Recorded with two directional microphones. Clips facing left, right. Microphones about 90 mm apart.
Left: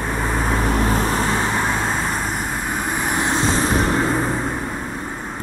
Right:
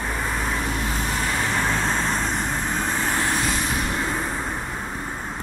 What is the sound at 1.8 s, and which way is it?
Vehicle, 10° left (ahead or behind).